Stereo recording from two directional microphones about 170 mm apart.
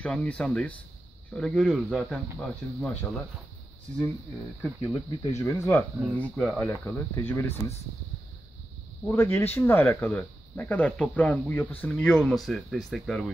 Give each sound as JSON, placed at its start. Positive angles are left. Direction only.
{"t": 0.0, "sound": "speech", "side_deg": 5}
{"t": 4.9, "sound": "speech", "side_deg": 20}
{"t": 6.1, "sound": "speech", "side_deg": 0}
{"t": 6.8, "sound": "speech", "side_deg": 15}
{"t": 9.0, "sound": "speech", "side_deg": 15}